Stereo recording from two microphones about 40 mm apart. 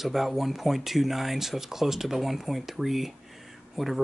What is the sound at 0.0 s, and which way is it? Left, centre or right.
Speech, centre.